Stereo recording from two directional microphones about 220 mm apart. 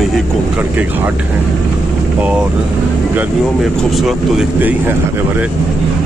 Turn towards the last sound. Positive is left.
turn(degrees=-10)  # may be behind; listen again after turning